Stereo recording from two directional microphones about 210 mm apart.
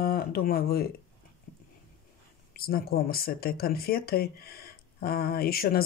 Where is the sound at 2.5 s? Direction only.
45° left (ahead or behind).